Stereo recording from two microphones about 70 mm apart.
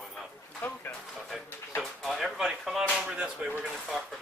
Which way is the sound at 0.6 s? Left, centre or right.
Left.